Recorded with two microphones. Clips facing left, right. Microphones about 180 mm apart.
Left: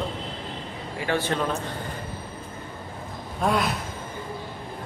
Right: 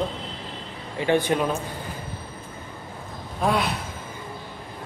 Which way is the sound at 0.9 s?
20° right (ahead or behind).